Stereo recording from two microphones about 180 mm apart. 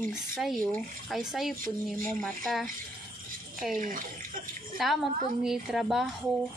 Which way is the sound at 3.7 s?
50° right (ahead or behind).